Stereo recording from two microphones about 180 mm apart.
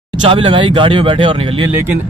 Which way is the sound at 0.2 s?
30° right (ahead or behind).